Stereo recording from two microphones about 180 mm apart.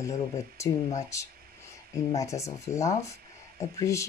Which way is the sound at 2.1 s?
15° left (ahead or behind).